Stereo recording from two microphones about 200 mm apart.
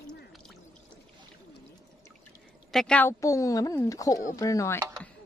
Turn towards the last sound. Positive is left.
turn(degrees=15)  # may be behind; listen again after turning